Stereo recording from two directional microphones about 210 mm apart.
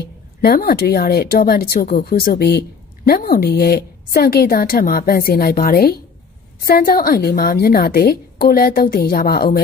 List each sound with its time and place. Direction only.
0.0 s speech: 45° left (ahead or behind)